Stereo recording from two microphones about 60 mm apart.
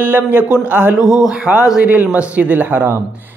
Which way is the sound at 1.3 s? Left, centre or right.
Centre.